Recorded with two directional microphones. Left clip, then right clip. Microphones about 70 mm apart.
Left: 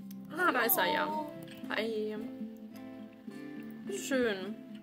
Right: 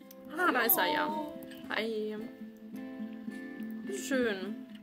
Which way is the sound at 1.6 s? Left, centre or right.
Centre.